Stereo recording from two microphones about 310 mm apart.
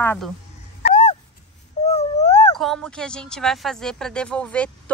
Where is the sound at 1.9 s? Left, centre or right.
Left.